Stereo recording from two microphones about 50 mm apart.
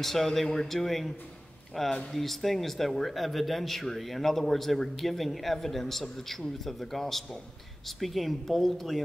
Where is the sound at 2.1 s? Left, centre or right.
Centre.